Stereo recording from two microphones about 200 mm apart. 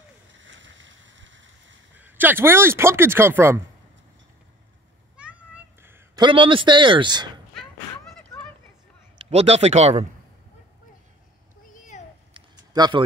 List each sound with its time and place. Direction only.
0.4 s vehicle: 65° right (ahead or behind)
2.0 s speech: 10° right (ahead or behind)
5.1 s meow: 5° right (ahead or behind)
6.2 s speech: 25° right (ahead or behind)
8.1 s a sound: 5° left (ahead or behind)
9.3 s speech: 30° right (ahead or behind)
12.4 s a sound: 20° right (ahead or behind)